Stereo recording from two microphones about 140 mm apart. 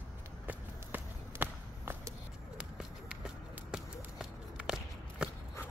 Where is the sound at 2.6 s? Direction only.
5° right (ahead or behind).